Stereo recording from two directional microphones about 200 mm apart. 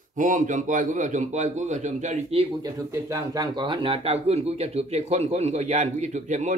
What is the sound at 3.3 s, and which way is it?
Speech, 20° right (ahead or behind).